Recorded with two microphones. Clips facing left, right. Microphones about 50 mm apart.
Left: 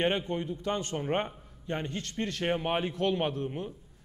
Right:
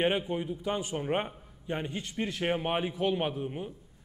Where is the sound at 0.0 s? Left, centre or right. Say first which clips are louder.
Even; centre.